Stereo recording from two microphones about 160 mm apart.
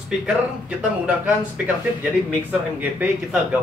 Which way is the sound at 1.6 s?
10° right (ahead or behind).